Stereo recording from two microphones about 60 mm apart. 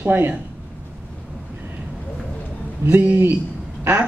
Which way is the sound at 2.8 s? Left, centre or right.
Right.